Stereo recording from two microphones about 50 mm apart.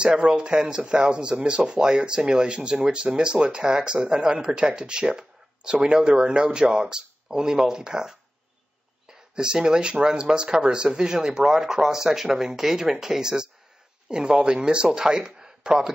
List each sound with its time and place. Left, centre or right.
0.0 s speech: centre
9.3 s speech: centre